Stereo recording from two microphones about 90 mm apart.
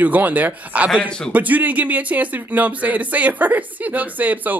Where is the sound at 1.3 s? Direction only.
15° right (ahead or behind).